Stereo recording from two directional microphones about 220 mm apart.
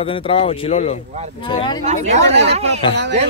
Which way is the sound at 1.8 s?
30° right (ahead or behind).